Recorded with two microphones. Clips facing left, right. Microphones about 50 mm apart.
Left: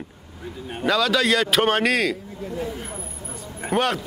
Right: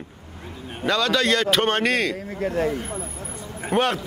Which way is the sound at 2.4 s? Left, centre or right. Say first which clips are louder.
Right 9 dB; right.